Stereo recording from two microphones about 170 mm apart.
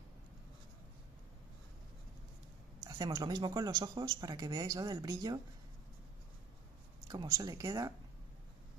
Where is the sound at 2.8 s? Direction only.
20° right (ahead or behind).